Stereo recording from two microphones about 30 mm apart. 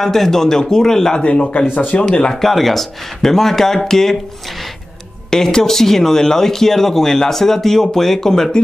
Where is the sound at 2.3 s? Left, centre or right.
Centre.